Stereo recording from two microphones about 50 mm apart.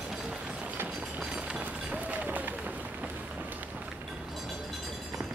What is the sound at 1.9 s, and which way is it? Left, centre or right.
Run, right.